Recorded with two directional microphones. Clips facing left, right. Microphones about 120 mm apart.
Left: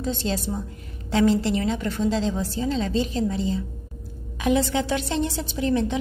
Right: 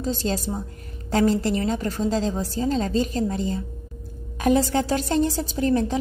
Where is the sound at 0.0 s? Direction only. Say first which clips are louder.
Right 1 dB; 40° right (ahead or behind).